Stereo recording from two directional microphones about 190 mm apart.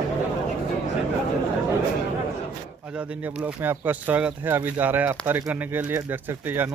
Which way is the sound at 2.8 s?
5° right (ahead or behind).